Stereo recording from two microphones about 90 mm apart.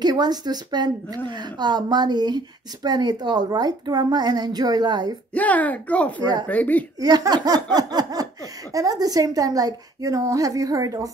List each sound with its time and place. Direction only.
0.0 s a woman's voice: 50° right (ahead or behind)
5.3 s a child's voice: 15° left (ahead or behind)
7.0 s a woman's voice: 45° right (ahead or behind)